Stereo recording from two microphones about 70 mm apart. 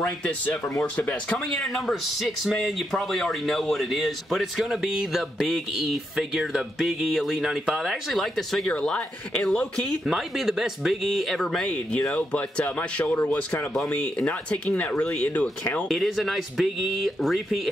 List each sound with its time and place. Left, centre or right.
1.3 s speech: centre
10.0 s speech: centre
11.4 s speech: centre
15.9 s speech: centre